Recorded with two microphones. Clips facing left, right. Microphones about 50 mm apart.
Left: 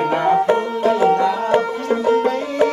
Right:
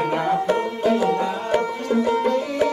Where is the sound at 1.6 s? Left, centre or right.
Left.